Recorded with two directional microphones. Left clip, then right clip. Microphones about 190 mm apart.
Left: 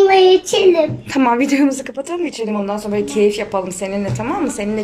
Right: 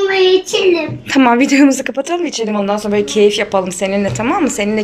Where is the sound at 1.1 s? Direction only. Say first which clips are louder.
Right 9 dB; centre (ahead or behind).